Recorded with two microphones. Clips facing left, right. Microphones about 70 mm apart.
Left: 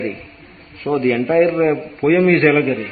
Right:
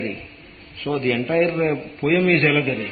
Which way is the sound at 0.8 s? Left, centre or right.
Left.